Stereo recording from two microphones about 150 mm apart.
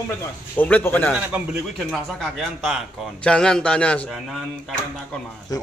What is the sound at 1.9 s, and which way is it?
A man's voice, 5° left (ahead or behind).